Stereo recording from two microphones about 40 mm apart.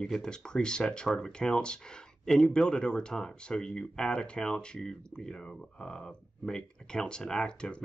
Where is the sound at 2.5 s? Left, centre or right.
Left.